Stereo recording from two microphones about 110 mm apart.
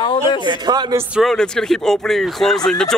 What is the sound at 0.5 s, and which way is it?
Speech, 40° right (ahead or behind).